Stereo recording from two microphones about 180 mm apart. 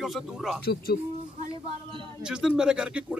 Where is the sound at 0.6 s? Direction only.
60° left (ahead or behind).